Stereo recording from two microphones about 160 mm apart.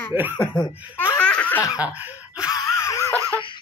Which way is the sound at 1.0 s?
10° left (ahead or behind).